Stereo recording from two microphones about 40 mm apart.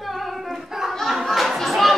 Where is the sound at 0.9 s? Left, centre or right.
Centre.